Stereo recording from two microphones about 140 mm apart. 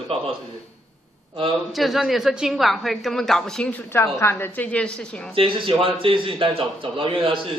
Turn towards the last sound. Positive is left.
turn(degrees=-40)  # may be behind; listen again after turning